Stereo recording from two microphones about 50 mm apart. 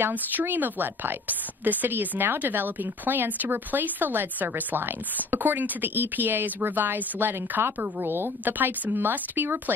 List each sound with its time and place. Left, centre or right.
0.1 s a woman's voice: right